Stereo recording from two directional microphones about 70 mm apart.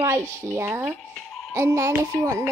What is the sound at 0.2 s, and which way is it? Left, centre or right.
Speech, left.